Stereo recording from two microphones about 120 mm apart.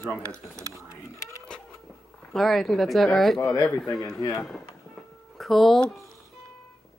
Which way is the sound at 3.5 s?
30° left (ahead or behind).